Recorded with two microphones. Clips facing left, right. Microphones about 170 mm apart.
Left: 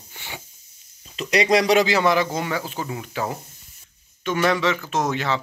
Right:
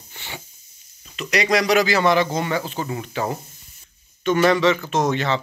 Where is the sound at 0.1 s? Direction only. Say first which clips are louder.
Right 1 dB; 10° left (ahead or behind).